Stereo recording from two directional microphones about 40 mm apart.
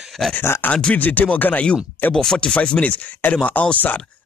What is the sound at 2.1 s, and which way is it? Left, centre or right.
Speech, centre.